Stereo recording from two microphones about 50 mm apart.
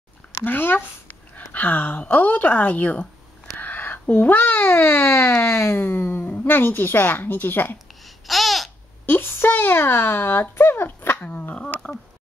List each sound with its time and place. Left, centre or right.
0.5 s speech: left
3.6 s a sound: left
4.1 s a child's voice: left
5.8 s speech: left
8.0 s babbling: centre
9.0 s a sound: left
9.6 s a child's voice: left
11.1 s speech: left